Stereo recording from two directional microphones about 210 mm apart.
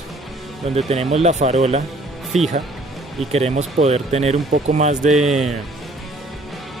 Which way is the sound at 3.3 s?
30° right (ahead or behind).